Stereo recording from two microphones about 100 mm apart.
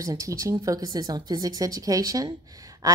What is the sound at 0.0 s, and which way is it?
A woman's voice, 35° right (ahead or behind).